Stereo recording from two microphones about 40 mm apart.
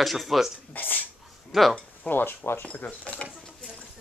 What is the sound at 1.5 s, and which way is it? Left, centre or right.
Speech, centre.